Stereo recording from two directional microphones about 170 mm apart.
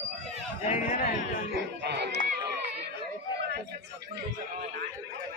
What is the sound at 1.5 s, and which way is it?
Speech, 85° right.